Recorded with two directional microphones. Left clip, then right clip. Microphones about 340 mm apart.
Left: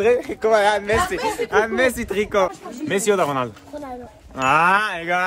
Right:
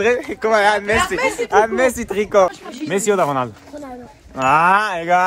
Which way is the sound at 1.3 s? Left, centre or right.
Centre.